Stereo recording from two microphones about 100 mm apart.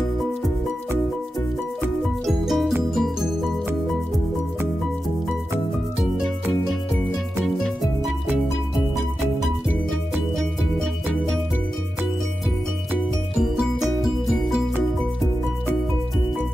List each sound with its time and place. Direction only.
2.2 s music: centre (ahead or behind)
7.4 s music: centre (ahead or behind)
13.4 s music: centre (ahead or behind)